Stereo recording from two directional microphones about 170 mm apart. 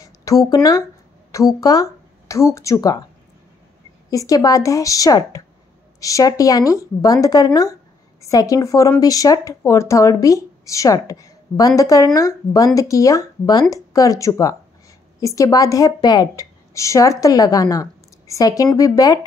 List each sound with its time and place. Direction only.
0.0 s speech: 20° left (ahead or behind)
4.1 s a woman's voice: 20° left (ahead or behind)